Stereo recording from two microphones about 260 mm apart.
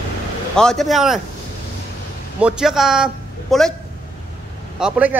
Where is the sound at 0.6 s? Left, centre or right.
Centre.